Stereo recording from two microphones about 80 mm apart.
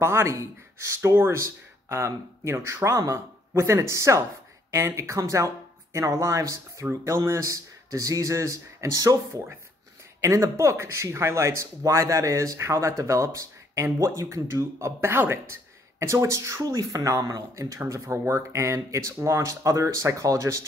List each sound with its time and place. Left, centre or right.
0.0 s speech: right